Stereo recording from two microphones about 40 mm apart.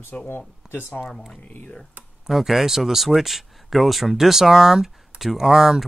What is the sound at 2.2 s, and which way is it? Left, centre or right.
Speech, centre.